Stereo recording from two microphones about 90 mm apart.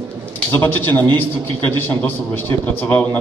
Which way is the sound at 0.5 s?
20° left (ahead or behind).